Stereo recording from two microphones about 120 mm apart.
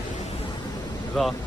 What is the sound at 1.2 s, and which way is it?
Speech, 5° left (ahead or behind).